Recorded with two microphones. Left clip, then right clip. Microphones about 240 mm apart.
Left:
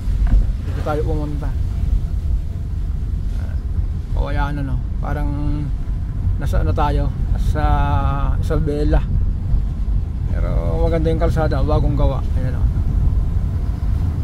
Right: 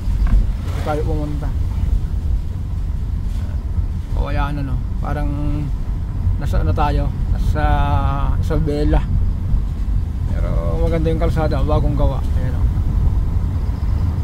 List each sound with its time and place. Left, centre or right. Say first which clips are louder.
0.9 s speech: even; centre
4.2 s speech: even; centre
6.4 s speech: even; centre
10.4 s speech: left 1 dB; centre